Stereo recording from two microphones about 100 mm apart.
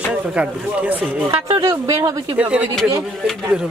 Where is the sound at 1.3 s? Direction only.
55° right (ahead or behind).